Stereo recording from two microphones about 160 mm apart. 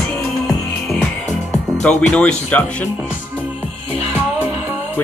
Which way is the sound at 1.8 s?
5° left (ahead or behind).